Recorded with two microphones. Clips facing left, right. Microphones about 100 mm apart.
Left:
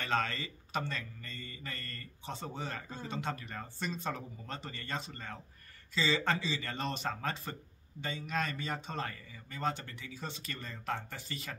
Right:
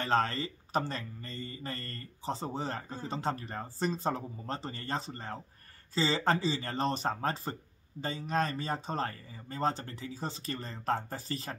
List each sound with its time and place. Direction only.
0.0 s speech: 35° right (ahead or behind)